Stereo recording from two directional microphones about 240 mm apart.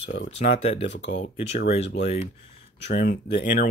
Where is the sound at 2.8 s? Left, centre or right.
Left.